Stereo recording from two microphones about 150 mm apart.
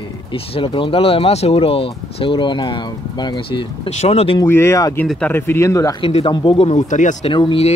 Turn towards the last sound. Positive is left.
turn(degrees=35)  # may be behind; listen again after turning